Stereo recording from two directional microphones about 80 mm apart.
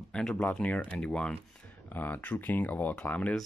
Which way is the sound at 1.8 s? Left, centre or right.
Left.